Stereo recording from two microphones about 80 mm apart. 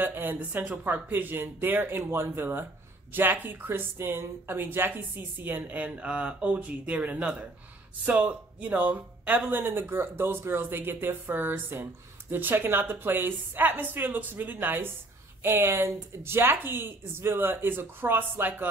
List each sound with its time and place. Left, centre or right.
0.0 s speech: right